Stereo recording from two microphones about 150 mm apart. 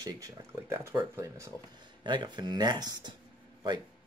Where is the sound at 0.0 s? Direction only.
20° right (ahead or behind).